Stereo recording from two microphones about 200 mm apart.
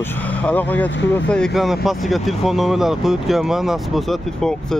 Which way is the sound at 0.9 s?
65° left (ahead or behind).